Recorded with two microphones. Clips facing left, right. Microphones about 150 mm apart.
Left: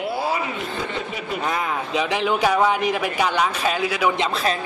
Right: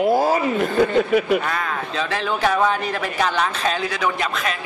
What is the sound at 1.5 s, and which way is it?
Speech, 15° left (ahead or behind).